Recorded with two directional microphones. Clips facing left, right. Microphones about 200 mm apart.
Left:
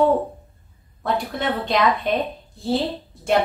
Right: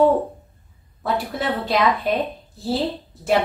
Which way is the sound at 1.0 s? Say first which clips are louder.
Even; 5° right (ahead or behind).